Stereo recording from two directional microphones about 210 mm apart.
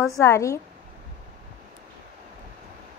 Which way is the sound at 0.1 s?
15° left (ahead or behind).